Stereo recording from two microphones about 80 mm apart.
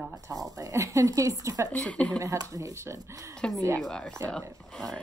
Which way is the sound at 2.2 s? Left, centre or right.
Right.